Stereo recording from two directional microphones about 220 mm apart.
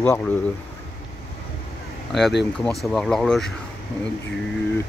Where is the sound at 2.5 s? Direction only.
Centre (ahead or behind).